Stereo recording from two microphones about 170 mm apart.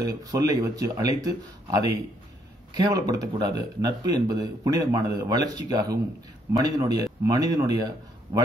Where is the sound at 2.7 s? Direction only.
20° right (ahead or behind).